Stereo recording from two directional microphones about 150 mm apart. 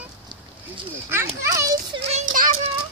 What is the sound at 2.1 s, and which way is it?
Child singing, 55° right (ahead or behind).